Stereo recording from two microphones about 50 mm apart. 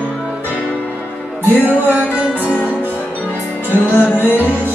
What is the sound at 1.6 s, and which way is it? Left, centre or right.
Music, right.